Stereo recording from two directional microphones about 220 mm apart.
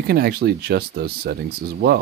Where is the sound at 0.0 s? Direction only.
45° right (ahead or behind).